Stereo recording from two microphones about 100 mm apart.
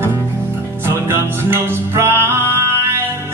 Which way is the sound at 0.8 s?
25° right (ahead or behind).